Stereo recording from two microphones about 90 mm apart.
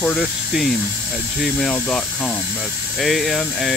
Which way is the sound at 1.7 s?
15° left (ahead or behind).